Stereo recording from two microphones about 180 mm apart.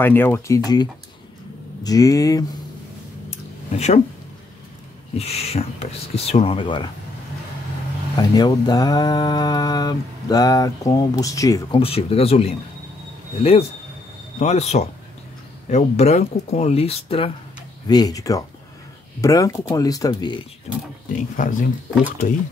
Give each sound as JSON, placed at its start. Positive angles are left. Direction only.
{"t": 0.0, "sound": "speech", "side_deg": 10}
{"t": 3.3, "sound": "a sound", "side_deg": 35}
{"t": 5.1, "sound": "speech", "side_deg": 35}
{"t": 8.2, "sound": "speech", "side_deg": 20}
{"t": 11.8, "sound": "speech", "side_deg": 30}
{"t": 17.8, "sound": "speech", "side_deg": 20}
{"t": 21.1, "sound": "speech", "side_deg": 45}